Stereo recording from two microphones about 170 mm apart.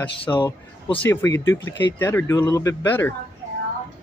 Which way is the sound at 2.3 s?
25° left (ahead or behind).